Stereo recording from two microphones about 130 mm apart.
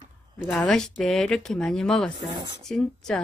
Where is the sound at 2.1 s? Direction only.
35° right (ahead or behind).